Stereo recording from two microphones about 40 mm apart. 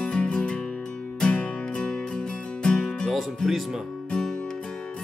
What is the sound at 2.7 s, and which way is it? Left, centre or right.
Music, centre.